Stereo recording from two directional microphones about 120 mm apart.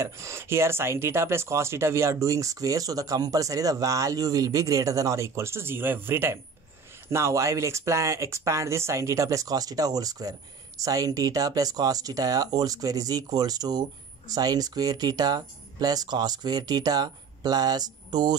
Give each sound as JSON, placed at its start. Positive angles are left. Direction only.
{"t": 0.0, "sound": "speech", "side_deg": -25}